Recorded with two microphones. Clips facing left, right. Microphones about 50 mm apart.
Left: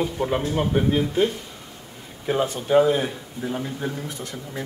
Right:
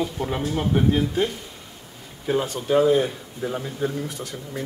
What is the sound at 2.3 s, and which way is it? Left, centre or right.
Speech, centre.